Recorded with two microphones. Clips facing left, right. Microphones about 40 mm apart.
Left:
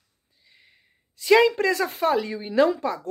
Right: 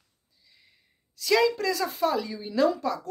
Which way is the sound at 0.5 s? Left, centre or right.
Left.